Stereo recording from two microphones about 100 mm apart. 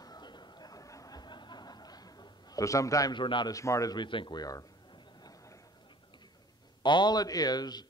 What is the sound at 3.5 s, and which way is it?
Speech, 30° left (ahead or behind).